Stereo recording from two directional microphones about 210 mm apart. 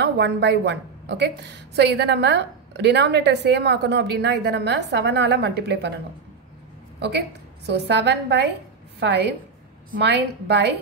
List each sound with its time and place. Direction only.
0.0 s a woman's voice: 55° right (ahead or behind)
7.0 s a woman's voice: 50° right (ahead or behind)